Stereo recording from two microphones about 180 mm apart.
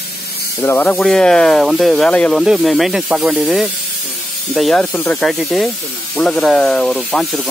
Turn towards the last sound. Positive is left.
turn(degrees=0)  # may be behind; listen again after turning